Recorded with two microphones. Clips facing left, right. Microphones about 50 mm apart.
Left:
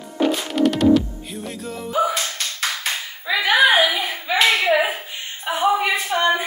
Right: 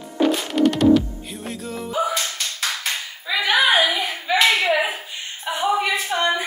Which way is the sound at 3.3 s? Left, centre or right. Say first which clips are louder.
Left 2 dB; centre.